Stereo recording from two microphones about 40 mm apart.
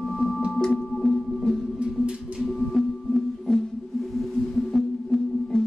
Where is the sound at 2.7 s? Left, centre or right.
Centre.